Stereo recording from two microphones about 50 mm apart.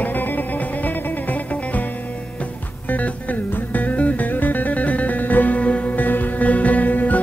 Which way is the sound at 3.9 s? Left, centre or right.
Left.